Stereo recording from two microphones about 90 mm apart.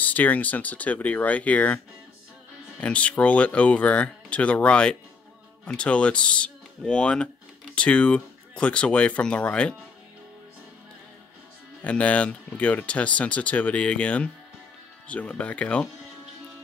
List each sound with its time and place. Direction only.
0.0 s speech: 20° left (ahead or behind)
2.8 s speech: 15° left (ahead or behind)
11.8 s speech: 15° left (ahead or behind)